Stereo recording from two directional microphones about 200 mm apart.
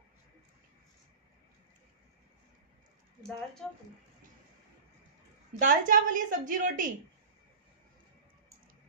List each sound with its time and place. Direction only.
3.2 s speech: centre (ahead or behind)
5.6 s a woman's voice: 40° right (ahead or behind)